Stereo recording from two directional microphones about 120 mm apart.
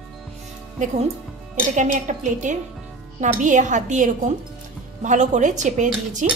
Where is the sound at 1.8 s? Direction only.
90° right.